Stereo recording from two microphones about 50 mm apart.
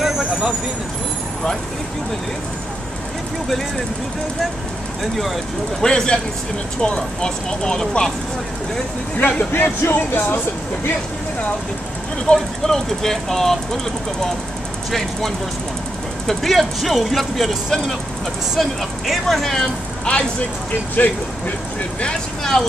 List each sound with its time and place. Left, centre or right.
0.2 s vehicle: centre
3.4 s speech: centre
5.8 s speech: centre
9.5 s speech: left
12.4 s speech: centre
14.9 s speech: centre
20.1 s speech: left
22.0 s speech: centre